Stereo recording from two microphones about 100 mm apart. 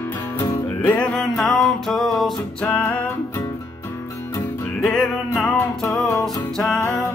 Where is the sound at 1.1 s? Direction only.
5° left (ahead or behind).